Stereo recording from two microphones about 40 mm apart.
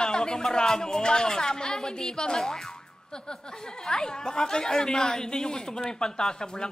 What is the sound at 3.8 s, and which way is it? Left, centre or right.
Speech, centre.